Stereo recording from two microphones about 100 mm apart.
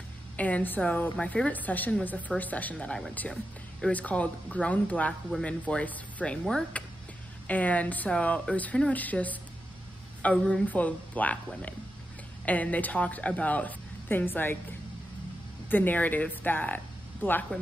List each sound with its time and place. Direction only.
0.4 s a woman's voice: 15° left (ahead or behind)
15.7 s speech: 20° left (ahead or behind)